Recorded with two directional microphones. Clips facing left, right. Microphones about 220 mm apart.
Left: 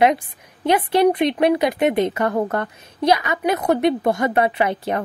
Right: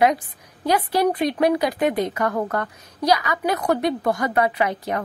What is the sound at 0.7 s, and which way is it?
Speech, 25° left (ahead or behind).